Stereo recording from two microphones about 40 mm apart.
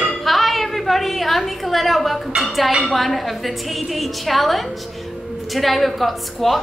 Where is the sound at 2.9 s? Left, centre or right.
Centre.